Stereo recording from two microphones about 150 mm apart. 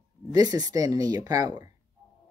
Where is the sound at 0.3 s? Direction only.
25° right (ahead or behind).